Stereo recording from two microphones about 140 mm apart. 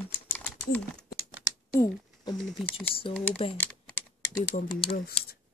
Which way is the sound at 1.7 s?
25° left (ahead or behind).